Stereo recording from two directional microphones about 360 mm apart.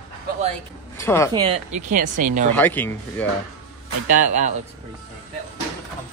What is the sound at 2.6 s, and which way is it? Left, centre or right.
Speech, centre.